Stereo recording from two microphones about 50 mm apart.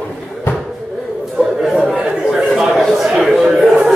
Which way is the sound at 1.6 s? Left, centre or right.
Centre.